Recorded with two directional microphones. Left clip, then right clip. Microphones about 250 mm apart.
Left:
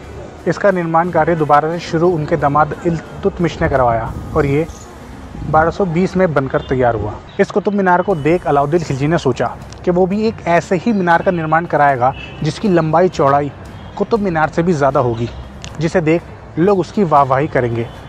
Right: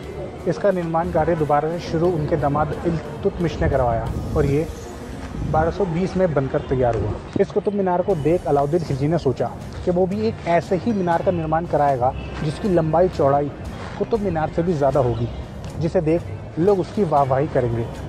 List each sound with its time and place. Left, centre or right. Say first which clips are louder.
0.5 s speech: left 6 dB; left